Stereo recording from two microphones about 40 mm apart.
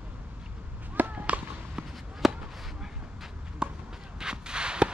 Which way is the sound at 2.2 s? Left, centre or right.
Centre.